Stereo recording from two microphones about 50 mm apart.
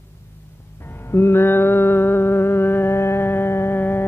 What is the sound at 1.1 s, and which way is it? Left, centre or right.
Mantra, left.